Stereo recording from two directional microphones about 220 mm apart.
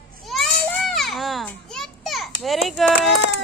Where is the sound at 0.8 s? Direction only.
Centre (ahead or behind).